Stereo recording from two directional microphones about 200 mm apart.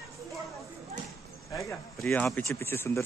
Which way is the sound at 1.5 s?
15° left (ahead or behind).